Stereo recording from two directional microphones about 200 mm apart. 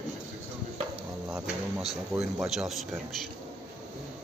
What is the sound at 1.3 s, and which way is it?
Speech, centre (ahead or behind).